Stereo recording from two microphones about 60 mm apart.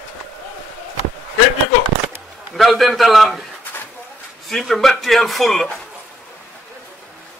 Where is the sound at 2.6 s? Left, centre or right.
Centre.